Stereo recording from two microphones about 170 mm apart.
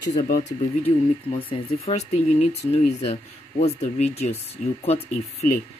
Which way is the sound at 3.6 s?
40° left (ahead or behind).